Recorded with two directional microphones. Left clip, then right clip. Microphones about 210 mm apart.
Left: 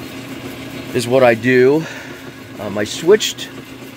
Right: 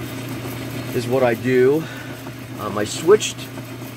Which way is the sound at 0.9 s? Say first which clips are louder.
Left 7 dB; 45° left (ahead or behind).